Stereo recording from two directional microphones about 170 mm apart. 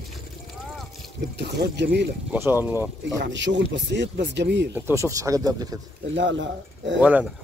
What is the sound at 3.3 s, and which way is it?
Speech, 90° right.